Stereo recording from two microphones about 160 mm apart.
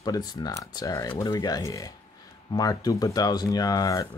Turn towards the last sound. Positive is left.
turn(degrees=20)  # may be behind; listen again after turning